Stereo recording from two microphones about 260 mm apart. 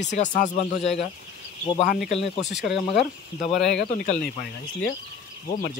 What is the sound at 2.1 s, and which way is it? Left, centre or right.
Speech, left.